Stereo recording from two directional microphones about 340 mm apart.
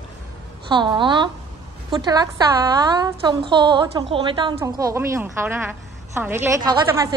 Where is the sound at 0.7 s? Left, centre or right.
Centre.